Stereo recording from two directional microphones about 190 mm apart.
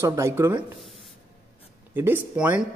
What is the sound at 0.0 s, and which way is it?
Speech, 15° right (ahead or behind).